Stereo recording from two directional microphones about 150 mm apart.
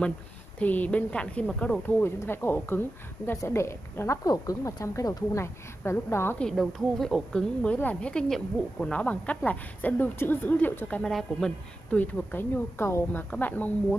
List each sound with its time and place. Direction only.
0.6 s a woman's voice: 10° left (ahead or behind)
6.4 s a woman's voice: centre (ahead or behind)